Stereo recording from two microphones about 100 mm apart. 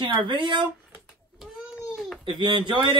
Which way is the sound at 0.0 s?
50° right (ahead or behind).